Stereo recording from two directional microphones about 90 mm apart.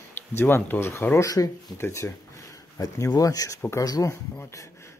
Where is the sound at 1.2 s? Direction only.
40° left (ahead or behind).